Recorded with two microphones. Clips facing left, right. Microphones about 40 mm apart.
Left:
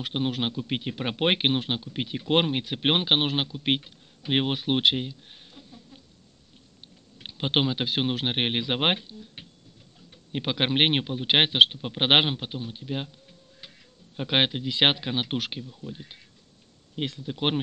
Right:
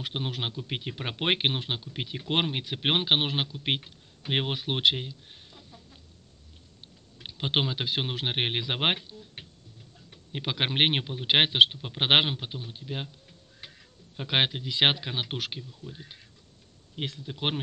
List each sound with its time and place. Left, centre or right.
0.0 s a man's voice: centre
7.2 s a man's voice: centre
10.3 s a man's voice: centre
14.1 s a man's voice: centre